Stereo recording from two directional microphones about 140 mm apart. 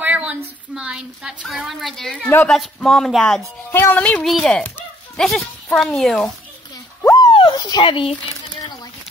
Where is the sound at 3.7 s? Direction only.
15° left (ahead or behind).